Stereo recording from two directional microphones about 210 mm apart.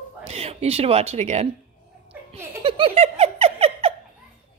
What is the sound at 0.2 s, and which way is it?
Speech, 30° right (ahead or behind).